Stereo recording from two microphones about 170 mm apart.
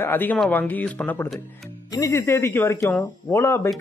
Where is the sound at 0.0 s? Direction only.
10° left (ahead or behind).